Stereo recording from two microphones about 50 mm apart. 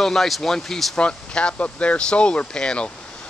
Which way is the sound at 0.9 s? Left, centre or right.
Centre.